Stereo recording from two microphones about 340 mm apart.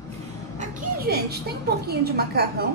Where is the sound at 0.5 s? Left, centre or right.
Right.